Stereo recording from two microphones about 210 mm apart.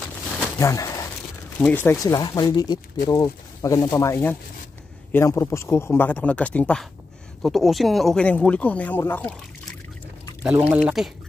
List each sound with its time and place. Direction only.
0.6 s speech: 15° left (ahead or behind)
9.1 s trickle: 5° left (ahead or behind)
10.4 s speech: 5° right (ahead or behind)